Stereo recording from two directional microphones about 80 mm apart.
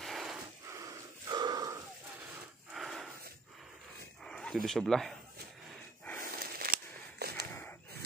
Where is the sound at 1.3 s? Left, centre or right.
Right.